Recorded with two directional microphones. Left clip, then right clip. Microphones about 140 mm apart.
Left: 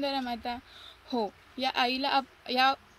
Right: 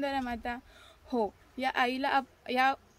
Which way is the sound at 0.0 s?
20° right (ahead or behind).